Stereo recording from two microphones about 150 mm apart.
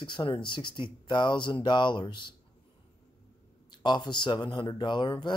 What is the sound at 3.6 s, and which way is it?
Speech, 30° left (ahead or behind).